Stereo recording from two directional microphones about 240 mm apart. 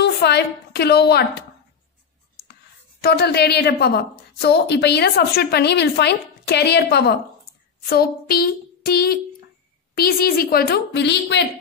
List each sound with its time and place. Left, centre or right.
0.0 s a woman's voice: left
3.0 s a woman's voice: left